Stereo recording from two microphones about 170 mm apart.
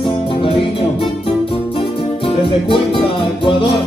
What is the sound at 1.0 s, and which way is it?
Music, 30° left (ahead or behind).